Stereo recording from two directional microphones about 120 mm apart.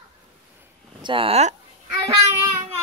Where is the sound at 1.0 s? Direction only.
45° right (ahead or behind).